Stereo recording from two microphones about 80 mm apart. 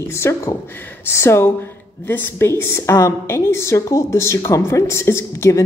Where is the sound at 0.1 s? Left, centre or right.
Left.